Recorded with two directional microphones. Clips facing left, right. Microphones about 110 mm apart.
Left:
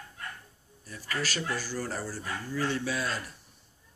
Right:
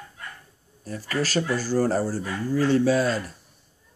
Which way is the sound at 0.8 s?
40° right (ahead or behind).